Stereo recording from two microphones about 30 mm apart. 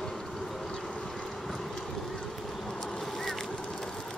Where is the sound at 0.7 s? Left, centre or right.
Left.